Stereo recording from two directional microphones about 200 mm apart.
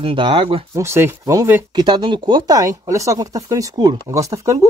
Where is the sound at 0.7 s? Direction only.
15° right (ahead or behind).